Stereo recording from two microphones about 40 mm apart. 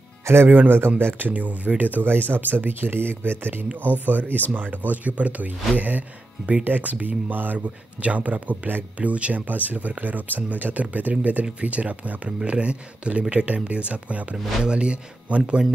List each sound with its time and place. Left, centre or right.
0.5 s speech: right
1.3 s speech: right
2.0 s speech: right
3.8 s speech: right
7.5 s speech: right
9.0 s speech: right